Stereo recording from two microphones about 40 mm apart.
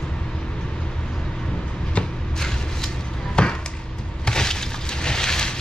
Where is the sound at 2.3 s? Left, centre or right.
Centre.